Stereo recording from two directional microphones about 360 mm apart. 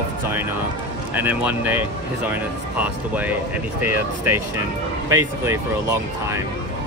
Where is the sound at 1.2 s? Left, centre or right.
Centre.